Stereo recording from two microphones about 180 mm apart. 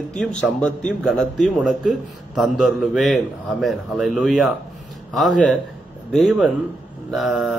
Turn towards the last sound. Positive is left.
turn(degrees=0)  # may be behind; listen again after turning